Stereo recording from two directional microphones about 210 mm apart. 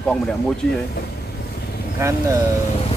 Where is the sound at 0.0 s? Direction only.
5° left (ahead or behind).